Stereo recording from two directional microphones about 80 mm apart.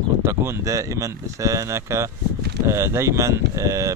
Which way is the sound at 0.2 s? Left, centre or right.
Right.